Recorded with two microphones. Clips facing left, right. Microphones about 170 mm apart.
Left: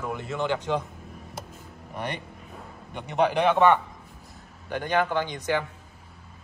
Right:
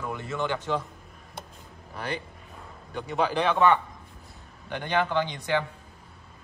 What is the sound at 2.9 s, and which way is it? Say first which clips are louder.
Speech: left 3 dB; 20° left (ahead or behind).